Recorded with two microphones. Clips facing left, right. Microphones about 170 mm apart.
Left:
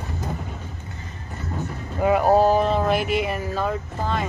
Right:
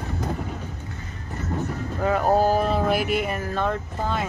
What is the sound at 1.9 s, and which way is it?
Speech, 10° left (ahead or behind).